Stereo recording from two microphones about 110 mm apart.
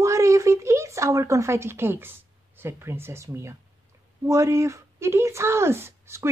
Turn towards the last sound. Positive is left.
turn(degrees=-25)  # may be behind; listen again after turning